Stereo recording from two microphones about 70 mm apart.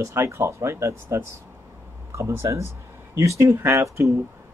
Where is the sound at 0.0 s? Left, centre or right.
Right.